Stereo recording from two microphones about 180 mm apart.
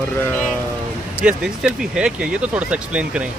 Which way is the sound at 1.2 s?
5° right (ahead or behind).